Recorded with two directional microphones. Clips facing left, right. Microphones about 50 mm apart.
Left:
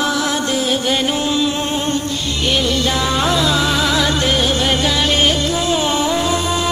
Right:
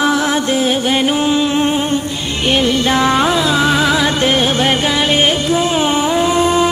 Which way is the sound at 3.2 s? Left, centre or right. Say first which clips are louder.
Right 3 dB; right.